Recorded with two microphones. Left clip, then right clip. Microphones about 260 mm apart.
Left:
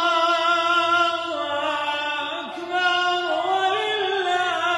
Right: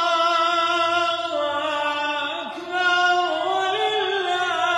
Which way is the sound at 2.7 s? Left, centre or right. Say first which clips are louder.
Right 2 dB; centre.